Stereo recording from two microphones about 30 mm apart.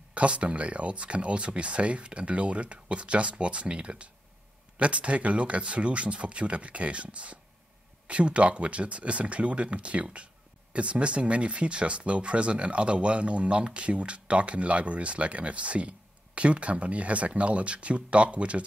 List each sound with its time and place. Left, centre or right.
0.1 s speech: right